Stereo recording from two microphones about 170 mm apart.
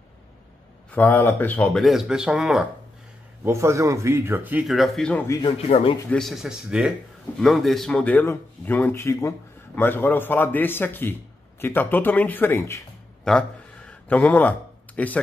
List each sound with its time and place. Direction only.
0.9 s a man's voice: 10° left (ahead or behind)
1.8 s speech: centre (ahead or behind)
3.4 s speech: 15° right (ahead or behind); by 5.2 s 5° left (ahead or behind)
5.7 s speech: 40° left (ahead or behind)
6.0 s a man's voice: centre (ahead or behind)
13.2 s a sound: 5° left (ahead or behind)